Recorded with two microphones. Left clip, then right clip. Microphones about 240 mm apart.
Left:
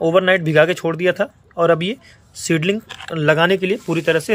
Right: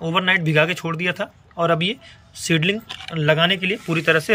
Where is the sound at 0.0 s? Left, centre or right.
Centre.